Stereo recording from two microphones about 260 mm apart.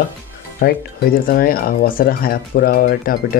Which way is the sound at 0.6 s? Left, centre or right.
Left.